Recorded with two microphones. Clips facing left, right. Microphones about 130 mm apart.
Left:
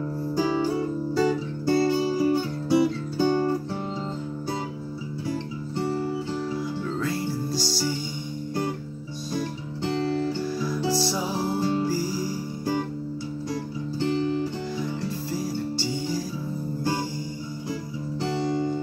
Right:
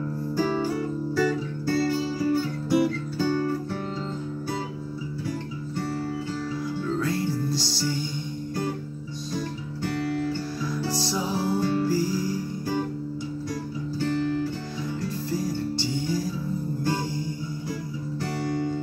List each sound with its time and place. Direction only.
0.4 s music: 15° left (ahead or behind)
5.8 s music: 20° left (ahead or behind)
7.0 s music: centre (ahead or behind)
9.9 s guitar: 20° left (ahead or behind)
10.9 s music: 5° left (ahead or behind)
14.0 s music: 20° left (ahead or behind)